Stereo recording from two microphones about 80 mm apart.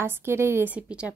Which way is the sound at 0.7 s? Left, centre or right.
Centre.